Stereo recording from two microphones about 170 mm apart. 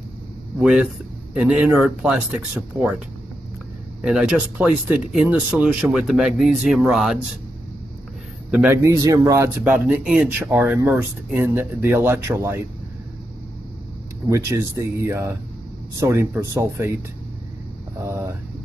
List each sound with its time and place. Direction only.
0.6 s speech: 5° right (ahead or behind)
4.0 s speech: 5° right (ahead or behind)
8.5 s a man's voice: 5° right (ahead or behind)
8.8 s a man's voice: 20° right (ahead or behind)
9.6 s speech: 5° right (ahead or behind)
14.3 s speech: 15° right (ahead or behind)
18.0 s speech: 15° right (ahead or behind)